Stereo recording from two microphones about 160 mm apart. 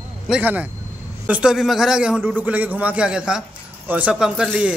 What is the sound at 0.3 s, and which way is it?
A man's voice, 10° right (ahead or behind).